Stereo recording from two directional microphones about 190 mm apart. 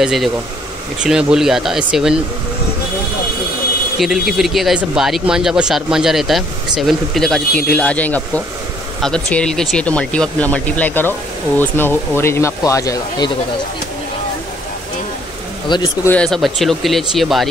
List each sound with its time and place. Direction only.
0.0 s speech: centre (ahead or behind)
4.0 s speech: centre (ahead or behind); by 13.3 s 20° left (ahead or behind)
15.7 s speech: 15° left (ahead or behind)
16.2 s speech: centre (ahead or behind)